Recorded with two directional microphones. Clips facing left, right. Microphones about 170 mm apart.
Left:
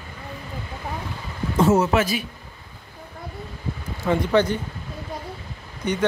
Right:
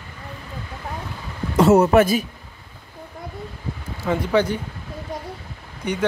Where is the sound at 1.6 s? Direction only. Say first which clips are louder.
Right 5 dB; 65° right (ahead or behind).